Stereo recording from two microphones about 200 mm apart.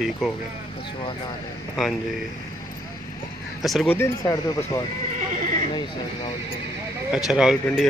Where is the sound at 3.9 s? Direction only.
15° left (ahead or behind).